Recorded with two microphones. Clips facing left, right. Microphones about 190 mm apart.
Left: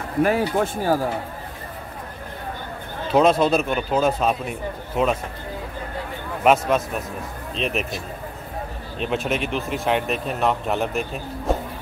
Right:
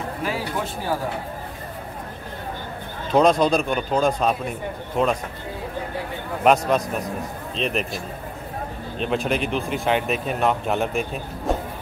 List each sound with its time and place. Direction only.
0.2 s speech: 55° left (ahead or behind)
3.1 s speech: 5° left (ahead or behind)
6.4 s speech: centre (ahead or behind)